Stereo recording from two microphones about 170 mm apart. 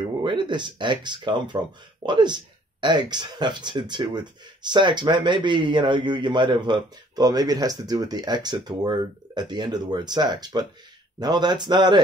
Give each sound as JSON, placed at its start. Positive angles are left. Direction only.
{"t": 0.2, "sound": "speech", "side_deg": -30}